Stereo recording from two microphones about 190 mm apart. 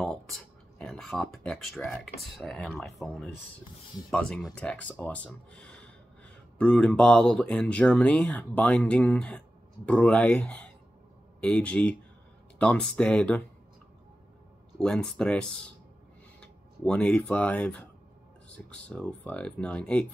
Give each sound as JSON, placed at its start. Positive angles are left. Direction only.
{"t": 0.0, "sound": "speech", "side_deg": 0}
{"t": 14.8, "sound": "speech", "side_deg": 5}